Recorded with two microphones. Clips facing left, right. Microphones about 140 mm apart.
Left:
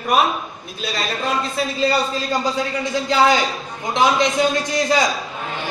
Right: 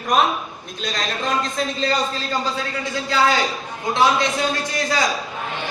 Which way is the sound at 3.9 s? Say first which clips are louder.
Left 1 dB; 20° left (ahead or behind).